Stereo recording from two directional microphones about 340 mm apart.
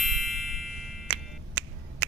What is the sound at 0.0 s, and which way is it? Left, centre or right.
Ding, centre.